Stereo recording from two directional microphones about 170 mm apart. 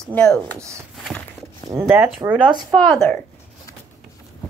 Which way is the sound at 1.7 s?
15° right (ahead or behind).